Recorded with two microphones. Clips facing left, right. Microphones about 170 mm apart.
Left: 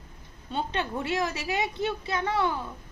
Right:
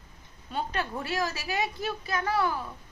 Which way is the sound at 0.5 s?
25° left (ahead or behind).